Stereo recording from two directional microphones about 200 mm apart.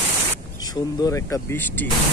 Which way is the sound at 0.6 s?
20° left (ahead or behind).